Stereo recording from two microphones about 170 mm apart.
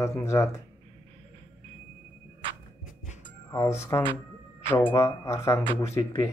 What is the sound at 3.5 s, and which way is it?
Speech, 15° left (ahead or behind).